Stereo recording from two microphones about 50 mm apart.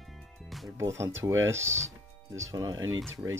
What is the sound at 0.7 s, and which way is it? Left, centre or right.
Speech, right.